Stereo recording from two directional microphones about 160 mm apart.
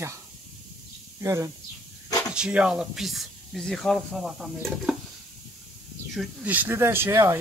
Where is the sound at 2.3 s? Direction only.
5° right (ahead or behind).